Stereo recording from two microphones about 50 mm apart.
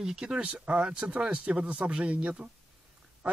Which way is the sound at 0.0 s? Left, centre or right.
Centre.